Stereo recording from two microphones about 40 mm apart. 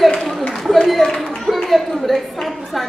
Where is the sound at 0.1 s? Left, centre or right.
Centre.